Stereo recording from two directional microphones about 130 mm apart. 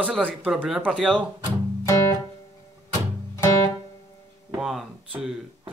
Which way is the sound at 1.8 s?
25° left (ahead or behind).